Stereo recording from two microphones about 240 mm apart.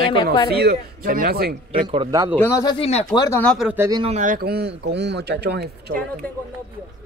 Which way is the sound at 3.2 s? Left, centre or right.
Centre.